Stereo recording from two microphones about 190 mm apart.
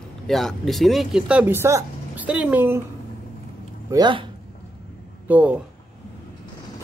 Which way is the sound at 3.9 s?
25° right (ahead or behind).